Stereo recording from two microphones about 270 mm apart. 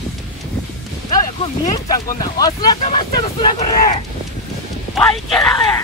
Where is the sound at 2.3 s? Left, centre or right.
Centre.